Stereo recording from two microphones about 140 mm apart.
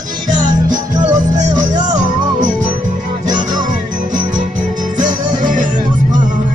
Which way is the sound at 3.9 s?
65° right (ahead or behind).